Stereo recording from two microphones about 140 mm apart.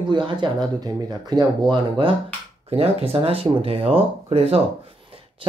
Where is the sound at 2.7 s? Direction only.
45° right (ahead or behind).